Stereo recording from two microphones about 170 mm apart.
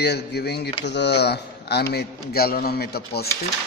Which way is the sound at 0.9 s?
85° left.